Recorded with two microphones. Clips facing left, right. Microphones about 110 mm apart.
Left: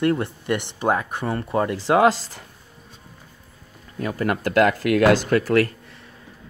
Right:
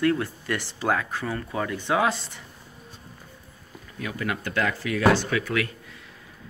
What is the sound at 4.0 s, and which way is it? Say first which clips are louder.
Speech: left 6 dB; 40° left (ahead or behind).